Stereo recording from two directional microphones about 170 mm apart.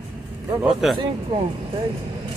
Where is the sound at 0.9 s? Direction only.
25° right (ahead or behind).